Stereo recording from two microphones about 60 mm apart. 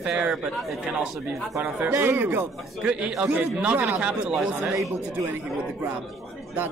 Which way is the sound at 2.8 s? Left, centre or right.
Centre.